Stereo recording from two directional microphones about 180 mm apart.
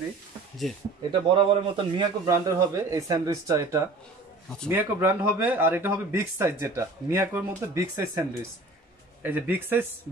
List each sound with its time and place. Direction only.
0.7 s speech: centre (ahead or behind)
1.3 s speech: 25° right (ahead or behind); by 9.8 s 10° right (ahead or behind)